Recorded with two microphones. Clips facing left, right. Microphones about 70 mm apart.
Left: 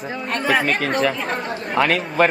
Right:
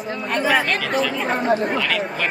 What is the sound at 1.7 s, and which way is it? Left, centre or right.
Speech, left.